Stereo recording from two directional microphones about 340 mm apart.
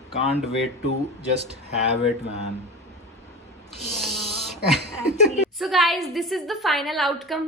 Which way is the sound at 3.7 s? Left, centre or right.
Centre.